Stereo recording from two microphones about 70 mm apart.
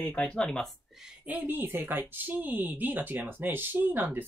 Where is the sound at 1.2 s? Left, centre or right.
Right.